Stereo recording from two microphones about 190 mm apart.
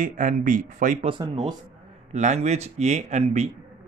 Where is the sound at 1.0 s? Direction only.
30° right (ahead or behind).